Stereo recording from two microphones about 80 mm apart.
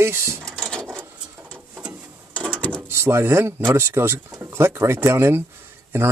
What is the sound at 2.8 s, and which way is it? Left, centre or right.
Speech, right.